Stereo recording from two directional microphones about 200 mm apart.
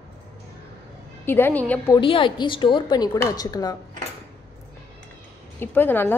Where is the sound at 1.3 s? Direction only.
10° left (ahead or behind).